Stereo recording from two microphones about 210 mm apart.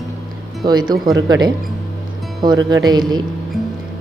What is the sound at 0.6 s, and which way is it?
Speech, 20° right (ahead or behind).